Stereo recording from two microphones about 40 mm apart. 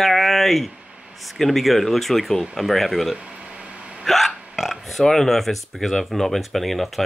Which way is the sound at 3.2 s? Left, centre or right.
Right.